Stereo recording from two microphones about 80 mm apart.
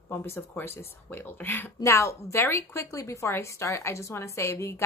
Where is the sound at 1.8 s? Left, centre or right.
Left.